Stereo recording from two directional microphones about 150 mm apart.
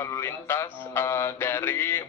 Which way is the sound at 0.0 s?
15° left (ahead or behind).